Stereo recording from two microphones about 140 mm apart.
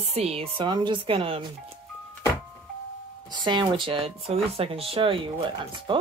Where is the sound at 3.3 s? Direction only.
35° right (ahead or behind).